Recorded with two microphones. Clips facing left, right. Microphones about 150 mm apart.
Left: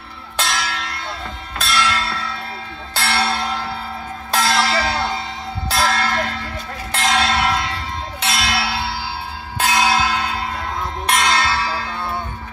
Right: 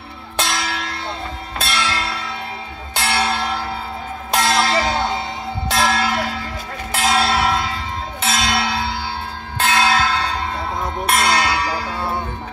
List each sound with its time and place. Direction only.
1.6 s church bell: 25° right (ahead or behind); by 3.6 s 10° right (ahead or behind)
4.3 s a sound: 15° right (ahead or behind)
5.7 s church bell: 10° right (ahead or behind); by 10.4 s 10° left (ahead or behind)
11.1 s church bell: 5° right (ahead or behind)